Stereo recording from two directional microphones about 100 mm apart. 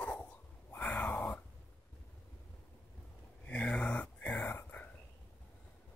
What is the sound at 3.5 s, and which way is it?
Whispering, 10° left (ahead or behind).